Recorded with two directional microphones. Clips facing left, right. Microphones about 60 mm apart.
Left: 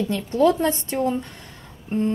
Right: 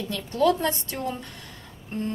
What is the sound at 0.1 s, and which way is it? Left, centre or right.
A woman's voice, left.